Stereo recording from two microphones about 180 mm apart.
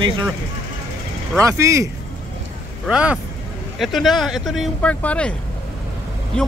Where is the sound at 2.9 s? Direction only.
5° right (ahead or behind).